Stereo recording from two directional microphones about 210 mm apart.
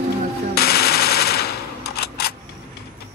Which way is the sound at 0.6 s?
50° left (ahead or behind).